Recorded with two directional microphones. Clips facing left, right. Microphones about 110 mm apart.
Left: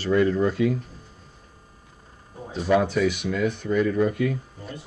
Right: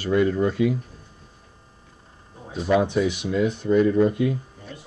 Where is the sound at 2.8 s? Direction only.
20° right (ahead or behind).